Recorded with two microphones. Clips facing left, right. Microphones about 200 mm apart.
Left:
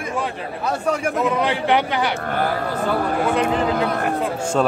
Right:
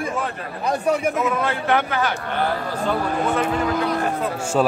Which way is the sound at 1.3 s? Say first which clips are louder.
Left 2 dB; 15° left (ahead or behind).